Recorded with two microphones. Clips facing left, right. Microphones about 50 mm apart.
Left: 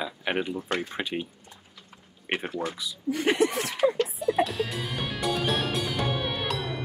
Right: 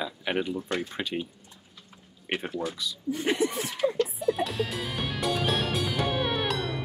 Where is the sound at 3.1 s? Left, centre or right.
Left.